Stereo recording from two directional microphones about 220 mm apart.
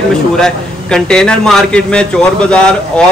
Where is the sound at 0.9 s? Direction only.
5° left (ahead or behind).